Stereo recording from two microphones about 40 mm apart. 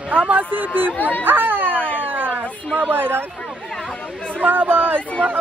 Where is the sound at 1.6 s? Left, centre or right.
Left.